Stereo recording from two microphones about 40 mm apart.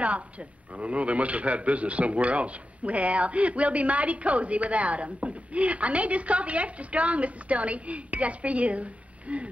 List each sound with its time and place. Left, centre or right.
0.0 s a man's voice: right